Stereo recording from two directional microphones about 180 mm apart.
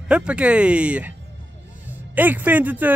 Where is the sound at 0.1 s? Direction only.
5° right (ahead or behind).